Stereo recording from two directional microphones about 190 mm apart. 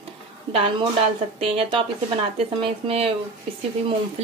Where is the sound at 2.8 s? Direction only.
30° right (ahead or behind).